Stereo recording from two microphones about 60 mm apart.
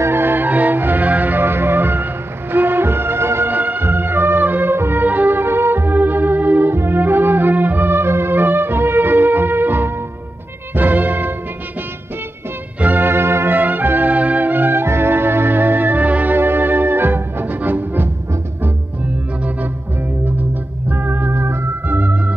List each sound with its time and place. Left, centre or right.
0.0 s music: right
3.5 s music: right
12.8 s music: right
13.6 s music: right
20.9 s organ: right